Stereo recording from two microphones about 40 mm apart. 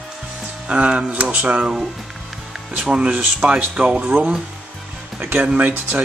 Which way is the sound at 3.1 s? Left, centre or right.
Right.